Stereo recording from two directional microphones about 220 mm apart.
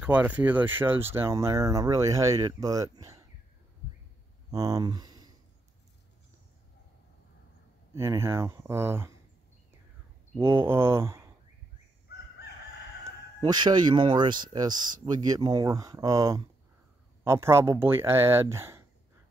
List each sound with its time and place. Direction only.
0.0 s speech: 5° right (ahead or behind)
4.5 s speech: 15° right (ahead or behind)
7.9 s speech: 10° right (ahead or behind)
10.3 s speech: 10° right (ahead or behind)
13.4 s speech: 20° right (ahead or behind)